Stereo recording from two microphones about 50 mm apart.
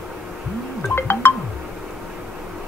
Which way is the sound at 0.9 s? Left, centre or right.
Left.